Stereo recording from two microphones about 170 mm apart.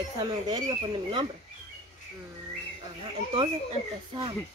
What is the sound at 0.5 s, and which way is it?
Speech, 25° right (ahead or behind).